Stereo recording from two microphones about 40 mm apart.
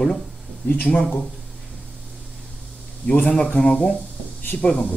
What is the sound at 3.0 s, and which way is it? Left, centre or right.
Speech, left.